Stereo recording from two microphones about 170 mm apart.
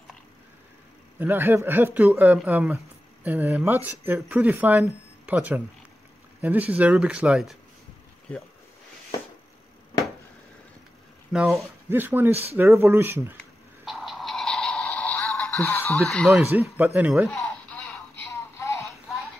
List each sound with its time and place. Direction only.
1.2 s speech: 15° right (ahead or behind)
11.3 s speech: centre (ahead or behind)
11.9 s speech: 10° right (ahead or behind)
13.8 s a sound: centre (ahead or behind)
16.1 s speech: centre (ahead or behind)
17.3 s a sound: 5° left (ahead or behind)
18.3 s synthetic singing: 15° left (ahead or behind)